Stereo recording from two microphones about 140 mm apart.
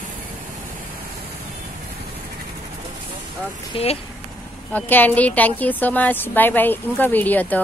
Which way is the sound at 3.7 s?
40° left (ahead or behind).